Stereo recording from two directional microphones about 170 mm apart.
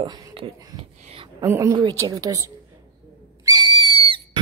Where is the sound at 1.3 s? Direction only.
15° right (ahead or behind).